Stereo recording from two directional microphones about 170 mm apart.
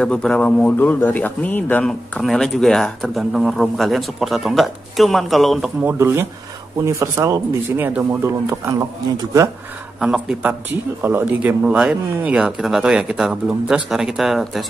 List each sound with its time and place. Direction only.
0.0 s a man's voice: 5° left (ahead or behind)
5.9 s speech: 15° right (ahead or behind)
9.9 s a man's voice: 5° right (ahead or behind)